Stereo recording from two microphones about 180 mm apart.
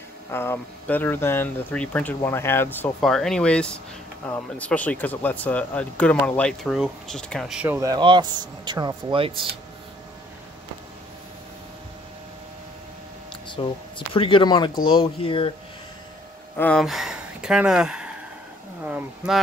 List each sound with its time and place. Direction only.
0.3 s speech: 15° left (ahead or behind); by 9.5 s 30° right (ahead or behind)
13.5 s speech: 25° left (ahead or behind)
16.5 s speech: 5° left (ahead or behind)